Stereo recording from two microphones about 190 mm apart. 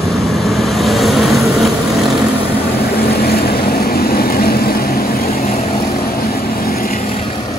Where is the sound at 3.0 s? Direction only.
55° left (ahead or behind).